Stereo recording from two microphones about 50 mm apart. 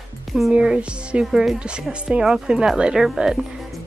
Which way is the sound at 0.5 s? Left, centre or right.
Centre.